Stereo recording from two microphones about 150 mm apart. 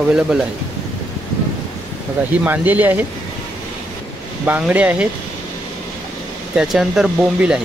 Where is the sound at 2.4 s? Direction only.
10° right (ahead or behind).